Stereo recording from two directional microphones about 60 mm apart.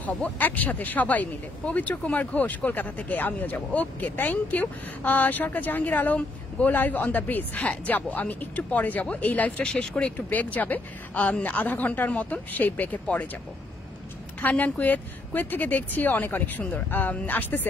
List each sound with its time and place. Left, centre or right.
0.0 s speech: left
9.6 s speech: centre
14.5 s speech: left